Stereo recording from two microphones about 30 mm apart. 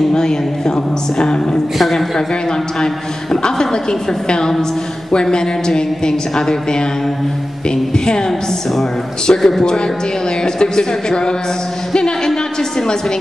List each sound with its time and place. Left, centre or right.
0.1 s a woman's voice: left
1.8 s a woman's voice: centre
3.4 s a woman's voice: left
5.1 s a woman's voice: left
9.3 s speech: centre
10.4 s a woman's voice: left